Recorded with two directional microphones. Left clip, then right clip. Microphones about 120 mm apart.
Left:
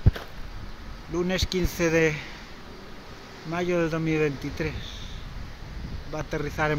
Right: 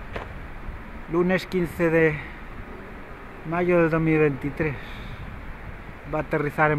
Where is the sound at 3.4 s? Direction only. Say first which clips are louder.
Right 5 dB; 10° left (ahead or behind).